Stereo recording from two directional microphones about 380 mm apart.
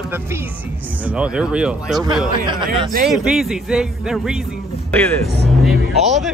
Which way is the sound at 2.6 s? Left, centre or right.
Right.